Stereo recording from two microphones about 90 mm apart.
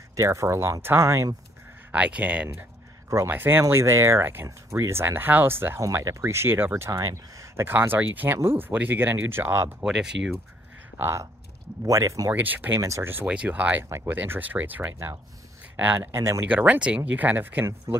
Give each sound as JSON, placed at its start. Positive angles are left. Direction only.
{"t": 0.1, "sound": "speech", "side_deg": -35}
{"t": 1.9, "sound": "speech", "side_deg": -15}
{"t": 3.1, "sound": "speech", "side_deg": -25}
{"t": 5.8, "sound": "speech", "side_deg": -40}
{"t": 9.8, "sound": "speech", "side_deg": -5}
{"t": 11.0, "sound": "speech", "side_deg": -30}
{"t": 11.8, "sound": "speech", "side_deg": -40}
{"t": 12.3, "sound": "speech", "side_deg": -20}
{"t": 12.8, "sound": "speech", "side_deg": -35}
{"t": 13.3, "sound": "speech", "side_deg": -15}
{"t": 16.4, "sound": "speech", "side_deg": -15}